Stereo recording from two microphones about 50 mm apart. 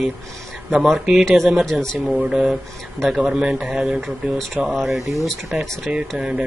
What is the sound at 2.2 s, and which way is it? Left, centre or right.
Speech, centre.